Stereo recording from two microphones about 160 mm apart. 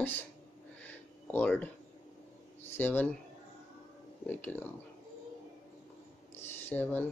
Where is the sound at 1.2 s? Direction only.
10° left (ahead or behind).